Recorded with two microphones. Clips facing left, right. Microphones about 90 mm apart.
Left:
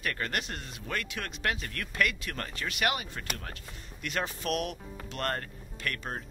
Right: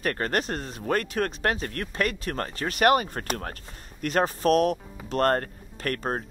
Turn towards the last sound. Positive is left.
turn(degrees=-40)  # may be behind; listen again after turning